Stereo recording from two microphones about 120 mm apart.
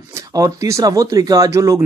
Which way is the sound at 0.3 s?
30° right (ahead or behind).